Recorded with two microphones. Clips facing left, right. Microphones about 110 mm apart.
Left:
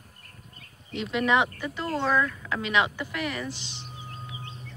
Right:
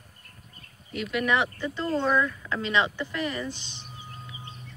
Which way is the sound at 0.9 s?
25° left (ahead or behind).